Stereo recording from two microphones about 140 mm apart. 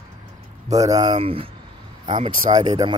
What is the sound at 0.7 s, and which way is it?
Speech, 25° right (ahead or behind).